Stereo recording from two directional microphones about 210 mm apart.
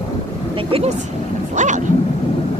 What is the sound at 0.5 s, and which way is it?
Speech, 25° right (ahead or behind).